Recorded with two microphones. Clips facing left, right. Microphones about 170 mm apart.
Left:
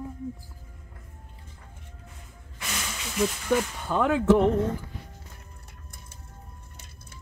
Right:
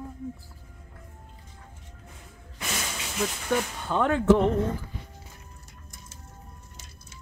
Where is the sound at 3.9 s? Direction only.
5° left (ahead or behind).